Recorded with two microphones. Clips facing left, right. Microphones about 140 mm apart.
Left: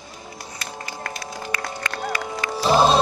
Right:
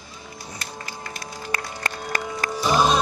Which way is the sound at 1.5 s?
40° right (ahead or behind).